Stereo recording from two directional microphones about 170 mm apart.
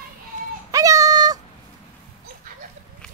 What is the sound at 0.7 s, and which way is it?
Child singing, 20° right (ahead or behind).